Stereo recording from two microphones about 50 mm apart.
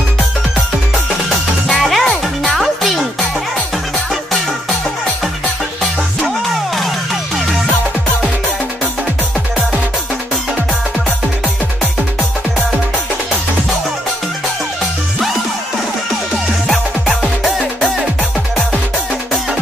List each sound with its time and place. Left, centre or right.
1.7 s music: centre
6.2 s music: centre
16.6 s music: centre